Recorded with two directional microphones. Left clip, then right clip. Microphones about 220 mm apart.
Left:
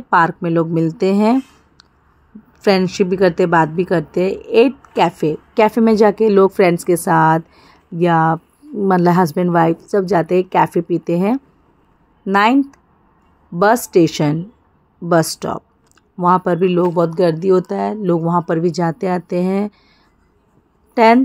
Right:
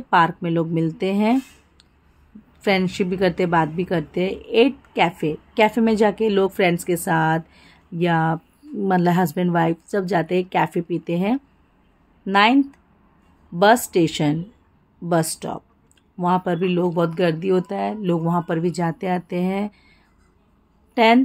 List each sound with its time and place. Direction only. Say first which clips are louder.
0.4 s speech: left 6 dB; 15° left (ahead or behind)
2.6 s a woman's voice: left 6 dB; 15° left (ahead or behind)
13.8 s a woman's voice: left 6 dB; 15° left (ahead or behind)
20.9 s a woman's voice: left 5 dB; 15° left (ahead or behind)